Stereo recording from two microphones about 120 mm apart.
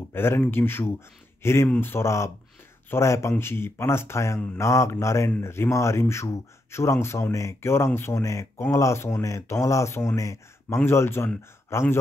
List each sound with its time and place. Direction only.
0.1 s speech: 20° left (ahead or behind)